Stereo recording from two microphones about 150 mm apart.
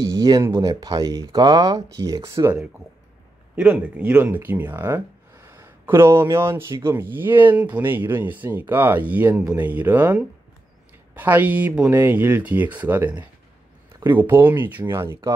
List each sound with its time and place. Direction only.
0.0 s speech: 20° right (ahead or behind)
3.5 s speech: 5° right (ahead or behind)